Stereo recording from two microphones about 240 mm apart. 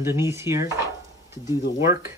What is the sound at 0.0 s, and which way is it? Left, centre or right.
Speech, centre.